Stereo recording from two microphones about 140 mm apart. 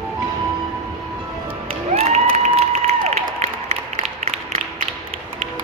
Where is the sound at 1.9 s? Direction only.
50° right (ahead or behind).